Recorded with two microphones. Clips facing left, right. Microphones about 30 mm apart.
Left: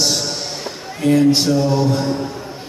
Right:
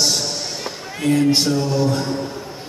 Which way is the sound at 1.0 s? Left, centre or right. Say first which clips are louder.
Left 3 dB; centre.